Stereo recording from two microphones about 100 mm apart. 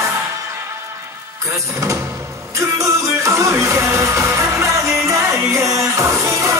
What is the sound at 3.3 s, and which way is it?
Music, 30° right (ahead or behind).